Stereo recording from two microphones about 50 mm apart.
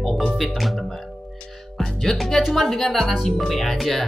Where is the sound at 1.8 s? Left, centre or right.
Centre.